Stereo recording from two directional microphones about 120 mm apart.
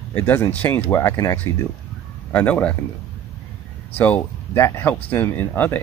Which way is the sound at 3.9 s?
15° left (ahead or behind).